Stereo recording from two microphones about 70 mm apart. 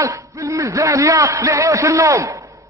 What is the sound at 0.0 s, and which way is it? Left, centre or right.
A man's voice, right.